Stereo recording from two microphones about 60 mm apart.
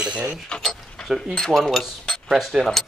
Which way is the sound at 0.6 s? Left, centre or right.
Centre.